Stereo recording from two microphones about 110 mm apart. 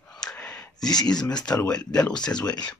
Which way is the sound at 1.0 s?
5° left (ahead or behind).